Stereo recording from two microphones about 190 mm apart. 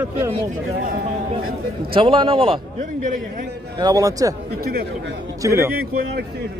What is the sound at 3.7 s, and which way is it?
Speech, 20° right (ahead or behind).